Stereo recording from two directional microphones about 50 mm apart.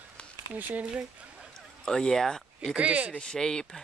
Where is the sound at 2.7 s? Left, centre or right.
Right.